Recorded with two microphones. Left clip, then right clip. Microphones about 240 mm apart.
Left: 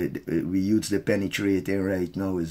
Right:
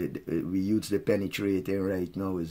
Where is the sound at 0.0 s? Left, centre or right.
Centre.